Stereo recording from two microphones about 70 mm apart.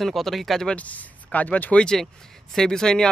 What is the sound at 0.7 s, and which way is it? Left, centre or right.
Speech, centre.